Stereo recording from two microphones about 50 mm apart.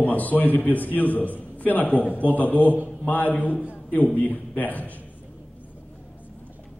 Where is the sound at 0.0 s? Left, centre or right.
Left.